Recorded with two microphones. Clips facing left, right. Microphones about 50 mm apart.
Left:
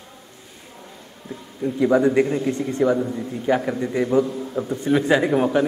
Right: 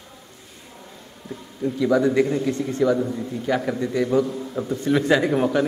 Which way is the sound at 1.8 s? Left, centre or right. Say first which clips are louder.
Left 2 dB; left.